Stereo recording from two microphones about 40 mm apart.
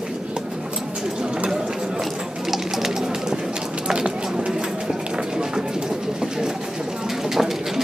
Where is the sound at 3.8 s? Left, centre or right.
Right.